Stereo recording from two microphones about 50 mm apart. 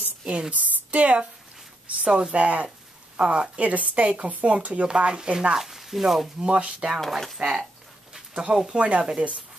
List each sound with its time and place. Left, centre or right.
0.3 s a woman's voice: right
2.0 s a woman's voice: centre
5.6 s speech: centre
6.4 s a woman's voice: right
7.0 s speech: centre
8.1 s a woman's voice: centre